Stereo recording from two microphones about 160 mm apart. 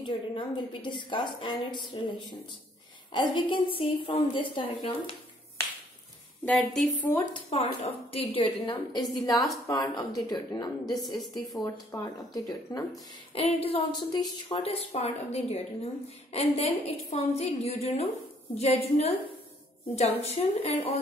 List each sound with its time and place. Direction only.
0.0 s a woman's voice: 30° left (ahead or behind)
3.1 s a woman's voice: 30° left (ahead or behind)
6.4 s a woman's voice: 5° left (ahead or behind)
7.4 s a woman's voice: 40° left (ahead or behind); by 11.0 s 25° left (ahead or behind)
11.0 s a woman's voice: centre (ahead or behind)
11.9 s a woman's voice: 20° left (ahead or behind)
13.3 s a woman's voice: 35° left (ahead or behind)